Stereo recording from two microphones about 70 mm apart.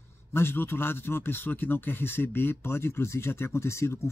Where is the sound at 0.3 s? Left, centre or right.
Left.